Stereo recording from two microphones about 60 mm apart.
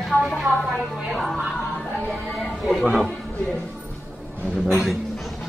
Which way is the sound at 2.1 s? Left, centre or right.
Centre.